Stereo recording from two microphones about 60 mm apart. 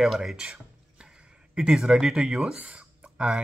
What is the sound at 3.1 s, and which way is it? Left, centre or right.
Speech, centre.